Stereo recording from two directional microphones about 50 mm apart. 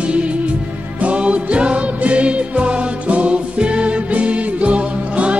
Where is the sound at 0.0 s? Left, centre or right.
Right.